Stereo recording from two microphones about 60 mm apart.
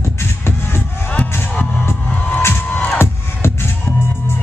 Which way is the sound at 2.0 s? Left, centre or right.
Left.